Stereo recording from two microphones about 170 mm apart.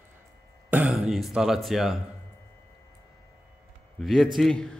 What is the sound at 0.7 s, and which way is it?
Speech, 5° right (ahead or behind).